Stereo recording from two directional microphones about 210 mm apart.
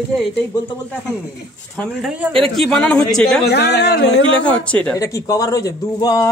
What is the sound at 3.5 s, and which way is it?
Speech, 55° left (ahead or behind).